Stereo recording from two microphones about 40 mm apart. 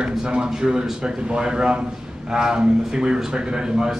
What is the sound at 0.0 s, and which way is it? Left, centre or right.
A man's voice, right.